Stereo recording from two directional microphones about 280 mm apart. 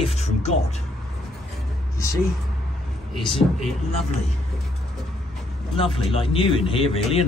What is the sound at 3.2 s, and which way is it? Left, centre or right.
Speech, centre.